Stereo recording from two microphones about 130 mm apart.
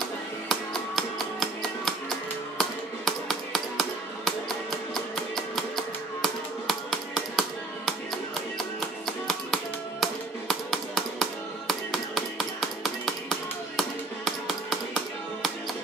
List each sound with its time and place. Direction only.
0.5 s music: centre (ahead or behind)
3.1 s music: centre (ahead or behind)
9.0 s music: centre (ahead or behind)
10.5 s tap: centre (ahead or behind)